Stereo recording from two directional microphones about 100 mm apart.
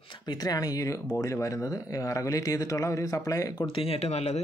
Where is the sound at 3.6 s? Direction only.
65° left (ahead or behind); by 4.4 s 90° left.